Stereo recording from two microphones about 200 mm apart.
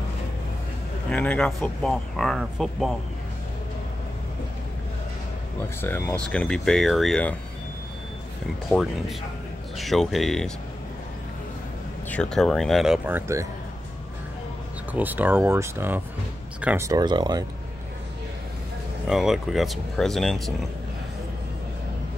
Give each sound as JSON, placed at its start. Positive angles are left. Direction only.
{"t": 1.1, "sound": "speech", "side_deg": 5}
{"t": 5.6, "sound": "speech", "side_deg": 10}
{"t": 9.8, "sound": "speech", "side_deg": 0}
{"t": 12.1, "sound": "speech", "side_deg": 5}
{"t": 14.9, "sound": "speech", "side_deg": -10}
{"t": 19.0, "sound": "speech", "side_deg": 0}